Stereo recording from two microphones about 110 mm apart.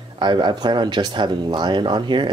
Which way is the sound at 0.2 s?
45° right (ahead or behind).